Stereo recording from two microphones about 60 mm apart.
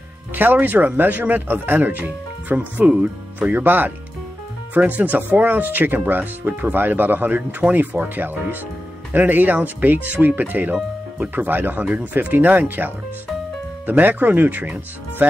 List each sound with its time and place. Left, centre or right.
0.3 s speech: right